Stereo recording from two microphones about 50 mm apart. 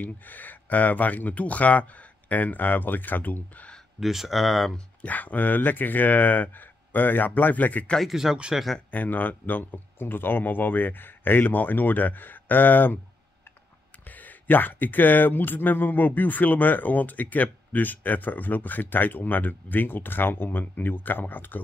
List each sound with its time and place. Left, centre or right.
0.0 s speech: left
4.0 s speech: centre
5.0 s speech: left
8.0 s speech: centre
8.9 s speech: left
14.0 s speech: left